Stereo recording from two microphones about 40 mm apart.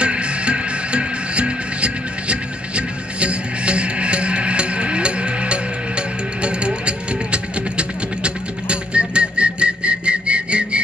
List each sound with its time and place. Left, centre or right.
0.0 s music: right